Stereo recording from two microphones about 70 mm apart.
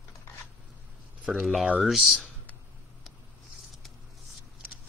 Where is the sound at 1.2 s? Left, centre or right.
Centre.